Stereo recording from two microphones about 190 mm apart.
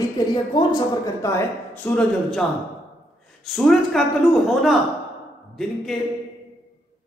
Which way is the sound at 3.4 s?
Centre (ahead or behind).